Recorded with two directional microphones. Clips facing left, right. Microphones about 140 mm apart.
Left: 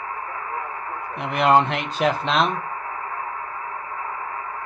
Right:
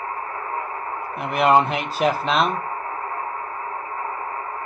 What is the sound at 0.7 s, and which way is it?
Radio, 35° right (ahead or behind).